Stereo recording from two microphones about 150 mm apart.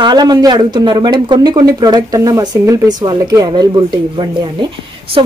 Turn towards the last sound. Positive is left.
turn(degrees=-30)  # may be behind; listen again after turning